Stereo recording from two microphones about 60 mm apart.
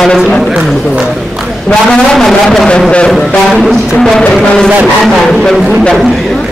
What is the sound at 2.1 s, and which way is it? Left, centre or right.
Speech, centre.